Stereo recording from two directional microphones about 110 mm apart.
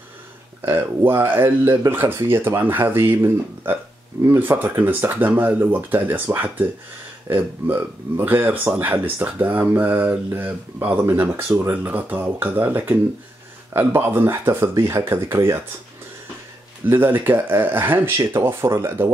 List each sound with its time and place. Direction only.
0.7 s speech: 20° right (ahead or behind)
16.9 s speech: 20° right (ahead or behind)